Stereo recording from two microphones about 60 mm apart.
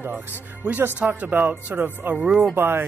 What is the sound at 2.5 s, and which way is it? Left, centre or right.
Speech, right.